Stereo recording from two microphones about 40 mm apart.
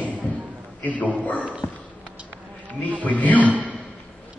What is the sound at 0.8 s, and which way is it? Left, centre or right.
Speech, left.